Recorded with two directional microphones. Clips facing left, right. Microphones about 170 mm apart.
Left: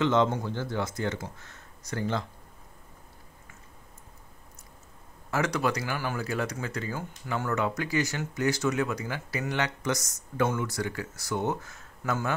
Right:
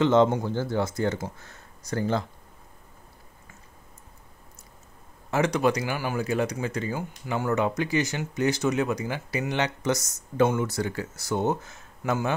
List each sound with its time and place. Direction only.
0.0 s speech: 35° right (ahead or behind)
5.3 s speech: 20° right (ahead or behind)